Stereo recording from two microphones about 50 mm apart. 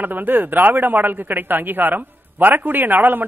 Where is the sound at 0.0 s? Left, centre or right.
Right.